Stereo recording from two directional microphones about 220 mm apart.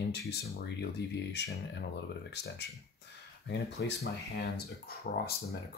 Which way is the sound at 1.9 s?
50° left (ahead or behind).